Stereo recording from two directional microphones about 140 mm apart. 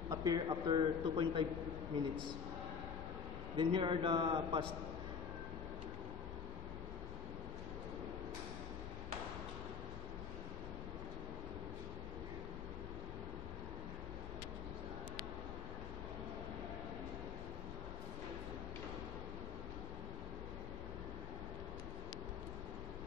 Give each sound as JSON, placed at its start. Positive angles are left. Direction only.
{"t": 0.1, "sound": "a man's voice", "side_deg": -25}
{"t": 3.5, "sound": "a man's voice", "side_deg": -35}